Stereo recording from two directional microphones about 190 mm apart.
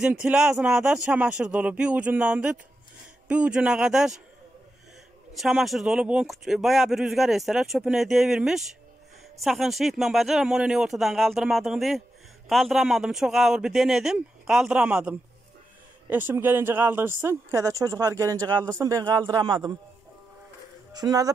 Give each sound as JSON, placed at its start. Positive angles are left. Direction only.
{"t": 0.0, "sound": "speech", "side_deg": -5}
{"t": 5.4, "sound": "a woman's voice", "side_deg": 0}
{"t": 20.9, "sound": "speech", "side_deg": -20}